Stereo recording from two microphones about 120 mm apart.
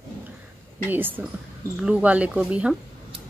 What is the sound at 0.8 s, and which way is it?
A woman's voice, 15° right (ahead or behind).